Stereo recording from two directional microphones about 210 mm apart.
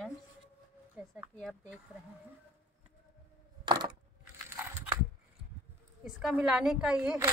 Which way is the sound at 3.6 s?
20° right (ahead or behind).